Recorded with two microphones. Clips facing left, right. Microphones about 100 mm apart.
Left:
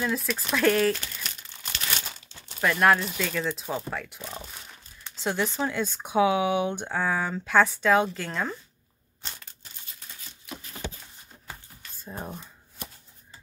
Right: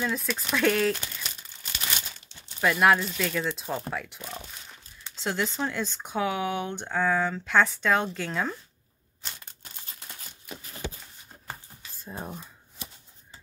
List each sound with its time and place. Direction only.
0.0 s speech: centre (ahead or behind)
2.6 s speech: 5° right (ahead or behind)
5.2 s speech: 5° left (ahead or behind)
11.9 s speech: centre (ahead or behind)
12.8 s a sound: 50° left (ahead or behind)